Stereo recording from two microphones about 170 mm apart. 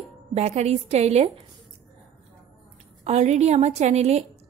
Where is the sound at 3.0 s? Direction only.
40° right (ahead or behind).